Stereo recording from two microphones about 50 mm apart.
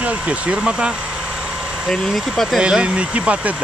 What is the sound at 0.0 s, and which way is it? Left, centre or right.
Speech, right.